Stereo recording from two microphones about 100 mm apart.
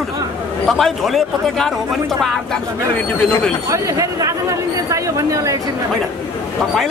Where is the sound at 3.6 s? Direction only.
30° right (ahead or behind).